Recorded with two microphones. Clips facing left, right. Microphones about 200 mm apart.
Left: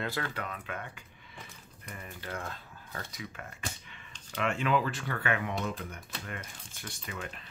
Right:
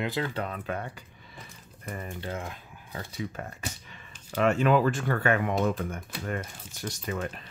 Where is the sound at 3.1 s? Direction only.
35° right (ahead or behind); by 6.0 s 50° right (ahead or behind).